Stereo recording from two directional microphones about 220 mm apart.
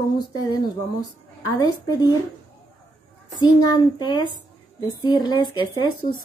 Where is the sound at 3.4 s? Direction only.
20° left (ahead or behind).